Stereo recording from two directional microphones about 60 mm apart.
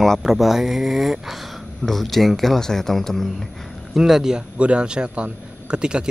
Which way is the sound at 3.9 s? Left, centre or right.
Centre.